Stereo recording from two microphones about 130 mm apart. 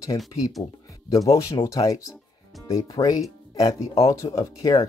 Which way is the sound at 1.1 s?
25° left (ahead or behind).